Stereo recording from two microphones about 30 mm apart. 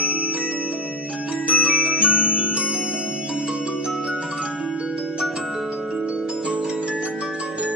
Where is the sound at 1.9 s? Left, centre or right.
Right.